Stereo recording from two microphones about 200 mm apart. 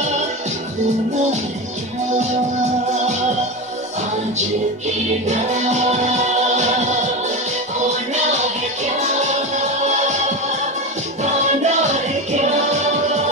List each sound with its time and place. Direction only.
5.3 s music: 35° right (ahead or behind)
9.8 s music: 35° right (ahead or behind)
11.4 s music: 35° right (ahead or behind)